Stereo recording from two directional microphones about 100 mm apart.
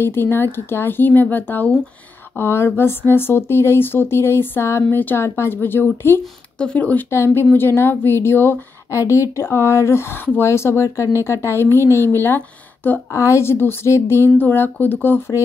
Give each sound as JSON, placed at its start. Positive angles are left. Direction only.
{"t": 0.0, "sound": "a woman's voice", "side_deg": 20}
{"t": 13.1, "sound": "a woman's voice", "side_deg": 30}